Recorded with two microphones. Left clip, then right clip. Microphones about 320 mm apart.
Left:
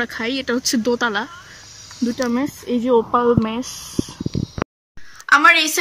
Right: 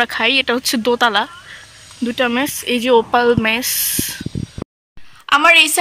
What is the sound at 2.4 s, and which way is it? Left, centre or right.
Speech, right.